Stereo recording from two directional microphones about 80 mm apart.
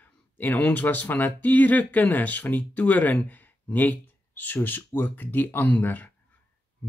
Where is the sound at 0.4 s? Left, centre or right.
Left.